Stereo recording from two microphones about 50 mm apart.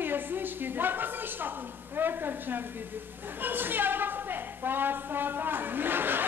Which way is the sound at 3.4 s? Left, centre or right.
Right.